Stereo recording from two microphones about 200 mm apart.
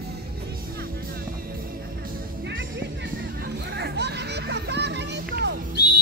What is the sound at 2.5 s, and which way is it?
Music, 65° right (ahead or behind).